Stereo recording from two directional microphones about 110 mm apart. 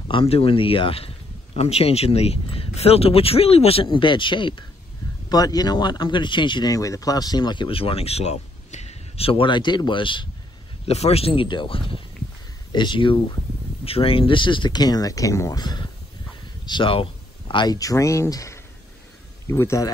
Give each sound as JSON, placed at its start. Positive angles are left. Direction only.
{"t": 0.1, "sound": "speech", "side_deg": 55}
{"t": 5.3, "sound": "speech", "side_deg": 35}
{"t": 10.9, "sound": "speech", "side_deg": 70}
{"t": 13.8, "sound": "speech", "side_deg": 60}
{"t": 17.7, "sound": "speech", "side_deg": 30}